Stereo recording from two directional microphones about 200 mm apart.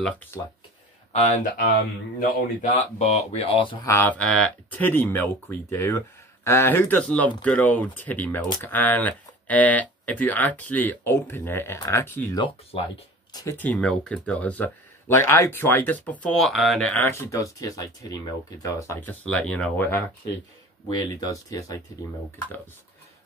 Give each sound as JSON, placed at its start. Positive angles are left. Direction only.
{"t": 2.1, "sound": "speech", "side_deg": 35}
{"t": 3.7, "sound": "speech", "side_deg": 15}
{"t": 12.4, "sound": "speech", "side_deg": 25}
{"t": 13.3, "sound": "speech", "side_deg": 15}
{"t": 21.1, "sound": "speech", "side_deg": 20}